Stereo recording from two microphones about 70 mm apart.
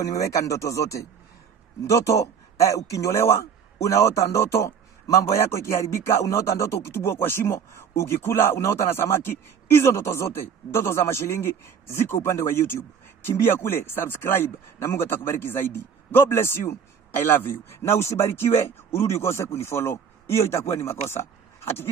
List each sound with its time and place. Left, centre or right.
0.0 s a man's voice: left